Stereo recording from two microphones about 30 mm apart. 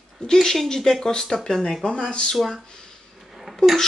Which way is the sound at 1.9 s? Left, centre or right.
Left.